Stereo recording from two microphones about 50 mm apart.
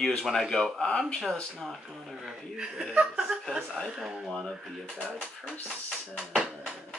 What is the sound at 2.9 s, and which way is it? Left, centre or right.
Speech, centre.